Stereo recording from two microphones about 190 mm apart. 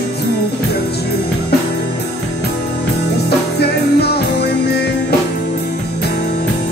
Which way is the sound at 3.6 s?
60° left (ahead or behind).